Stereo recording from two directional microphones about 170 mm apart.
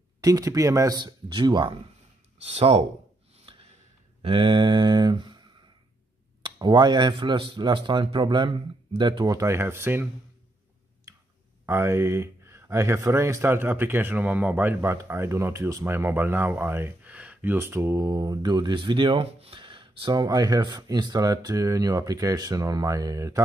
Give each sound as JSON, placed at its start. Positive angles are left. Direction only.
{"t": 0.2, "sound": "speech", "side_deg": -20}
{"t": 2.4, "sound": "speech", "side_deg": -35}
{"t": 3.5, "sound": "gasp", "side_deg": -30}
{"t": 4.2, "sound": "speech", "side_deg": -30}
{"t": 11.1, "sound": "clicking", "side_deg": -15}
{"t": 11.6, "sound": "speech", "side_deg": -15}